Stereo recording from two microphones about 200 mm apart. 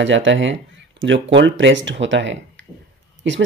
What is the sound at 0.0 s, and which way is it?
Speech, 65° right (ahead or behind).